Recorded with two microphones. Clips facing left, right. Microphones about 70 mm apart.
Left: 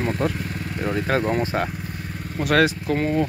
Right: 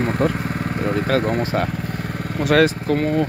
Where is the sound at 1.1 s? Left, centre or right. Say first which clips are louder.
Right 3 dB; centre.